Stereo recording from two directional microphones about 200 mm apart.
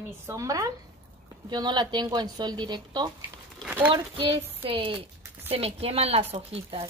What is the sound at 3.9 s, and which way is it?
A woman's voice, 25° right (ahead or behind).